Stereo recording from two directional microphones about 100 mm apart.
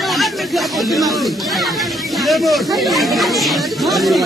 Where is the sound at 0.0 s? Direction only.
Centre (ahead or behind).